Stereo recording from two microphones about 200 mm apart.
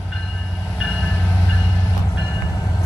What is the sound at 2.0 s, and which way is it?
Train, 20° left (ahead or behind).